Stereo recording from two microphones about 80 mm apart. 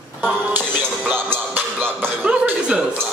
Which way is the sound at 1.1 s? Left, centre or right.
Right.